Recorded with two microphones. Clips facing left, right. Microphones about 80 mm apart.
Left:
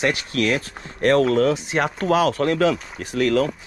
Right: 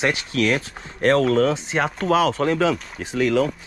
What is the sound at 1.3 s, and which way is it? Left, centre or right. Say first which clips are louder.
Speech: even; right.